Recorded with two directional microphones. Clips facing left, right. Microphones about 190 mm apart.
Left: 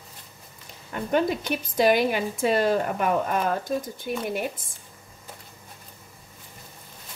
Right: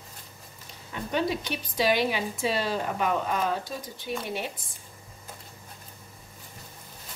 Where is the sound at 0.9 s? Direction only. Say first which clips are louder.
Left 4 dB; 50° left (ahead or behind).